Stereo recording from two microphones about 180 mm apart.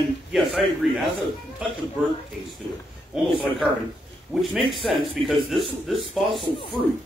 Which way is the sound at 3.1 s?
5° right (ahead or behind).